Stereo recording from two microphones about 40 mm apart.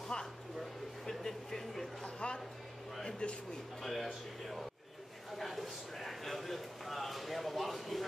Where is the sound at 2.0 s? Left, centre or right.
Left.